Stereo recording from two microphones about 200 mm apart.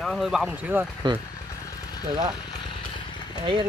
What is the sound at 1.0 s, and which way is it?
Speech, 25° right (ahead or behind).